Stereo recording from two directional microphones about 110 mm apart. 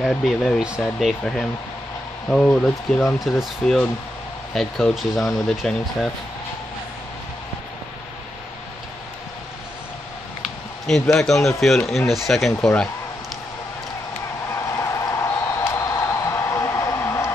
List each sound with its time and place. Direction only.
0.0 s speech: centre (ahead or behind)
11.1 s speech: 5° left (ahead or behind)
14.8 s a sound: 30° left (ahead or behind)